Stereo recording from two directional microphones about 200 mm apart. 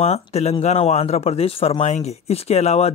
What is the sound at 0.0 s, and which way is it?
Speech, 30° left (ahead or behind).